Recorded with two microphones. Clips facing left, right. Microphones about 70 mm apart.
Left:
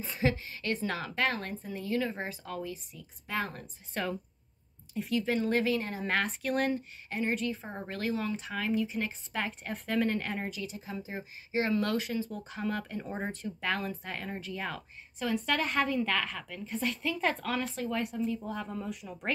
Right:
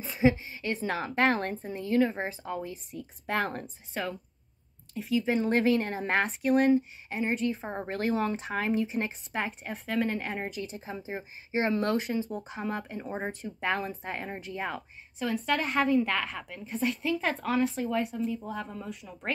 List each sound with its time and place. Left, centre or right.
0.2 s a woman's voice: centre
2.7 s speech: right
3.9 s speech: centre
5.2 s speech: centre
5.5 s a woman's voice: right
6.0 s speech: right
6.4 s speech: centre; by 9.4 s right
9.4 s a woman's voice: centre
10.5 s speech: right
15.1 s a woman's voice: centre